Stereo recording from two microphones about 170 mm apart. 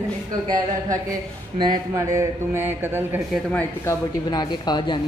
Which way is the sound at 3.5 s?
10° left (ahead or behind).